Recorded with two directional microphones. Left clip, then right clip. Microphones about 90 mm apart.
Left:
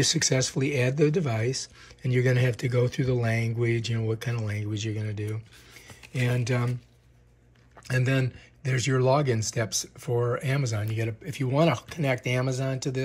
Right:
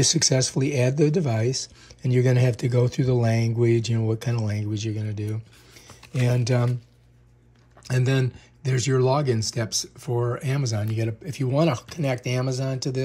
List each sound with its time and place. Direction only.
0.0 s speech: 50° right (ahead or behind)
5.9 s speech: 55° right (ahead or behind)
7.8 s speech: 45° right (ahead or behind)